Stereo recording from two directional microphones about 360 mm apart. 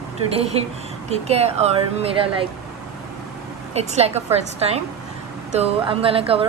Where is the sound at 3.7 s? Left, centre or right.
Centre.